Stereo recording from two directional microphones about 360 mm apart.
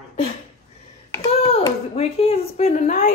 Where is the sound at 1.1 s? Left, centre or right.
Centre.